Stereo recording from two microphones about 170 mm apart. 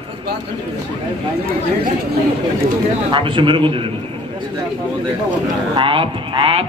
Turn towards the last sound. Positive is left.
turn(degrees=-30)  # may be behind; listen again after turning